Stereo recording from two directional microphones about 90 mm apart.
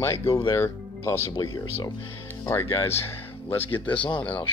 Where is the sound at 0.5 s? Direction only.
30° left (ahead or behind).